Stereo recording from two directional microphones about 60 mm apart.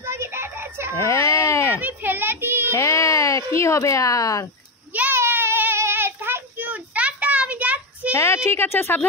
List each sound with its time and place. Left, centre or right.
0.0 s children playing: right
1.0 s speech: left
1.8 s a sound: right
2.7 s speech: left
5.1 s child singing: right
6.7 s a sound: right
8.1 s speech: left